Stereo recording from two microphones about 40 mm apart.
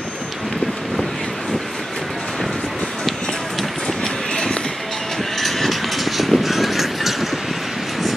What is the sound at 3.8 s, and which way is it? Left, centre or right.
Music, left.